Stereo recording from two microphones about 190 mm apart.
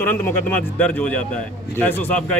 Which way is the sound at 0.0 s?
10° left (ahead or behind).